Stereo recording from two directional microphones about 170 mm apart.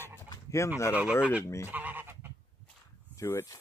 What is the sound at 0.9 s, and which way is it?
Speech, 5° right (ahead or behind).